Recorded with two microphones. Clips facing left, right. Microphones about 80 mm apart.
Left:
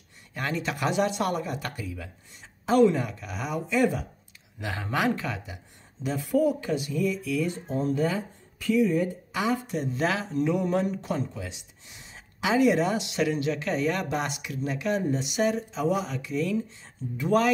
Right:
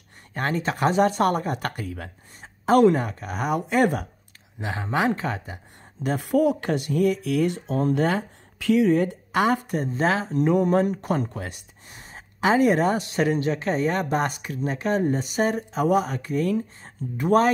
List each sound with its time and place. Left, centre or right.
0.3 s speech: right
2.4 s a sound: right
2.9 s speech: right
4.6 s speech: right
6.0 s speech: right
9.9 s speech: right